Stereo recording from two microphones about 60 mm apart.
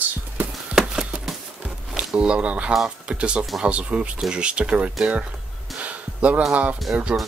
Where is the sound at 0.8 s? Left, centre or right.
Centre.